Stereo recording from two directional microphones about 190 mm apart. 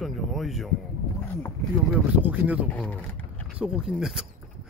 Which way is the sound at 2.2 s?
10° right (ahead or behind).